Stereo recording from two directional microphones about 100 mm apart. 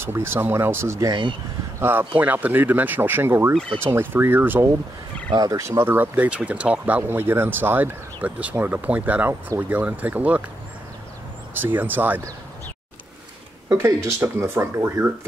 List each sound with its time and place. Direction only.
0.0 s speech: 25° right (ahead or behind)
5.3 s speech: 35° right (ahead or behind)
5.9 s speech: 15° right (ahead or behind)
11.6 s speech: 20° right (ahead or behind)
13.7 s speech: 30° right (ahead or behind)